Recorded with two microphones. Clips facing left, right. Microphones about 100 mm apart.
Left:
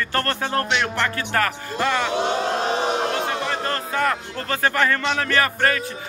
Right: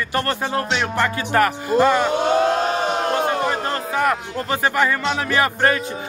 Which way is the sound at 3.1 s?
50° right (ahead or behind).